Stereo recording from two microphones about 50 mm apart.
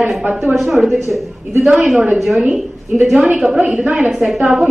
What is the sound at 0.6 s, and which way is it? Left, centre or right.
Speech, centre.